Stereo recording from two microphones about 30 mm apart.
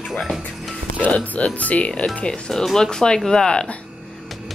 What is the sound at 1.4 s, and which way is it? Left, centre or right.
Speech, left.